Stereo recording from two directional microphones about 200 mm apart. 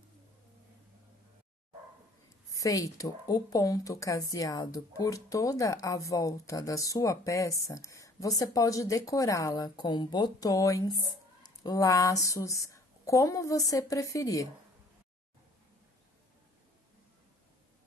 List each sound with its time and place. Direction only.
2.5 s a woman's voice: 15° left (ahead or behind)